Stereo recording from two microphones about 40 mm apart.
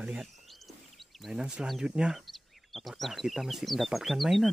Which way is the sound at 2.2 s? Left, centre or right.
Centre.